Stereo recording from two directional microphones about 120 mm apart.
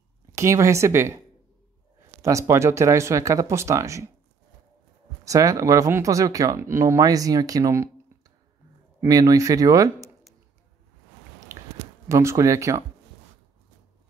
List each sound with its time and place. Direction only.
0.3 s speech: 25° right (ahead or behind)
2.2 s speech: 25° right (ahead or behind)
5.2 s speech: 25° right (ahead or behind)
9.0 s speech: 30° right (ahead or behind)
12.1 s speech: 25° right (ahead or behind)